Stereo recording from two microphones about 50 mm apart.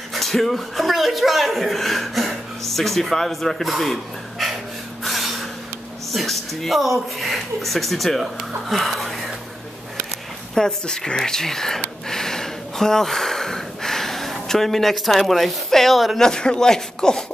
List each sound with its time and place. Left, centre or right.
0.1 s speech: centre
5.0 s a sound: centre
6.1 s speech: centre
10.5 s speech: centre
12.1 s gasp: centre
16.2 s speech: centre